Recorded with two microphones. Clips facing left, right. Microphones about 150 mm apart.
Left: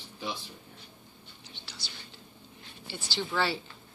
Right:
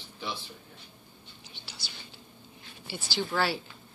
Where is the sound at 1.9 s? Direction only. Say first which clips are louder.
Even; 10° right (ahead or behind).